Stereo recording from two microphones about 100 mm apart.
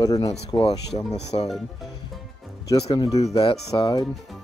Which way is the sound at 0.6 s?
90° left.